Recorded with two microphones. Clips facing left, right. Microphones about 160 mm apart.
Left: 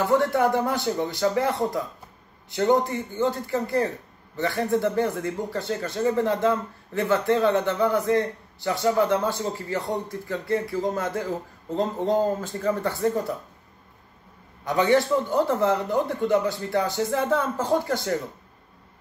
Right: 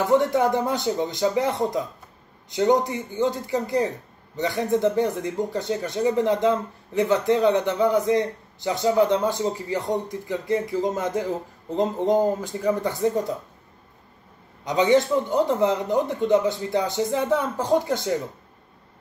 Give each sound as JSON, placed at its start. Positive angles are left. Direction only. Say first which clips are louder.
{"t": 0.0, "sound": "a man's voice", "louder": "right 1 dB", "side_deg": -20}
{"t": 14.6, "sound": "a man's voice", "louder": "right 2 dB", "side_deg": -20}